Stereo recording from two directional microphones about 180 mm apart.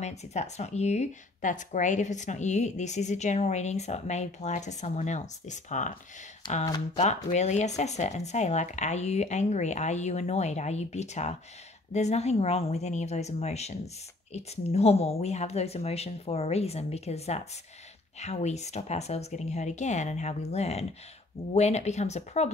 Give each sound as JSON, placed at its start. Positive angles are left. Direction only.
{"t": 0.0, "sound": "speech", "side_deg": 40}
{"t": 6.6, "sound": "speech", "side_deg": 20}
{"t": 7.0, "sound": "speech", "side_deg": 40}